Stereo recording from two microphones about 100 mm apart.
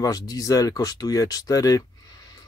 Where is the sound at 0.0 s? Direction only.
40° left (ahead or behind).